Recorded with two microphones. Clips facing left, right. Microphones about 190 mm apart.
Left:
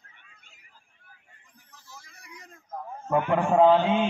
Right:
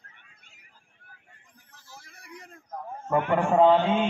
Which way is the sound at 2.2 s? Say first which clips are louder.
Right 6 dB; 55° right (ahead or behind).